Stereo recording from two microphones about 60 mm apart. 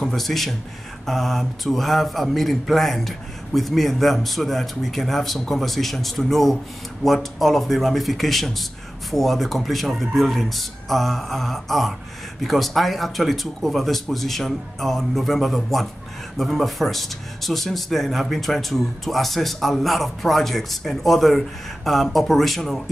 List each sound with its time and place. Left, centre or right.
0.0 s speech: centre